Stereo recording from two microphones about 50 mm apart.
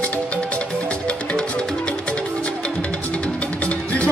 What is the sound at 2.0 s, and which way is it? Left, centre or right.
Music, left.